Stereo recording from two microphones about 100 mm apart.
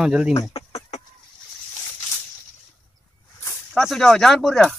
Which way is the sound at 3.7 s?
5° left (ahead or behind).